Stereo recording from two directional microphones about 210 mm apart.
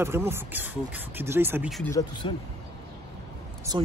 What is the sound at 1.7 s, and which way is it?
Speech, centre (ahead or behind).